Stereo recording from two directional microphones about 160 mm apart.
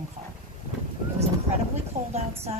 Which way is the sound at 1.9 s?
55° right (ahead or behind).